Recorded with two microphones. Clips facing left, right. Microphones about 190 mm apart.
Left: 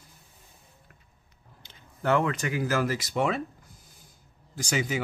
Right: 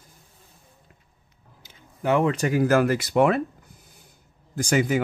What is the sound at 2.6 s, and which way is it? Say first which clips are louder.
Speech: right 8 dB; 55° right (ahead or behind).